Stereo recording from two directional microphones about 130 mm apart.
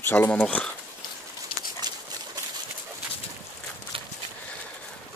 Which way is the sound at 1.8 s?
35° right (ahead or behind).